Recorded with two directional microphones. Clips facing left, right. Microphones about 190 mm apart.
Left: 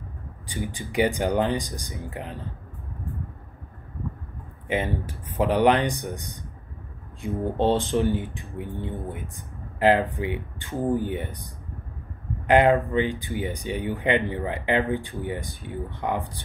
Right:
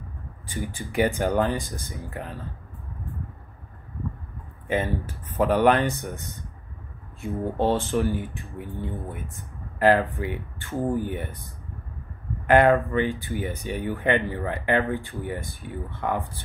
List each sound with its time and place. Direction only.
0.5 s speech: 15° left (ahead or behind)
4.6 s speech: 15° left (ahead or behind)
9.8 s speech: 15° left (ahead or behind)
12.4 s speech: 15° left (ahead or behind)